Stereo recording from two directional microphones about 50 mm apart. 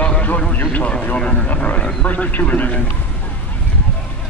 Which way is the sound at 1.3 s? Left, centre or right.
Left.